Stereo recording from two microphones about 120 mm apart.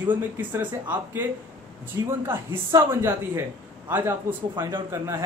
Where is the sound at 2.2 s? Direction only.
20° right (ahead or behind).